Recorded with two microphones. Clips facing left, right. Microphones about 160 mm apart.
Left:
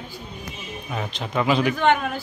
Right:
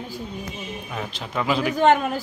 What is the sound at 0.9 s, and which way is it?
Speech, centre (ahead or behind).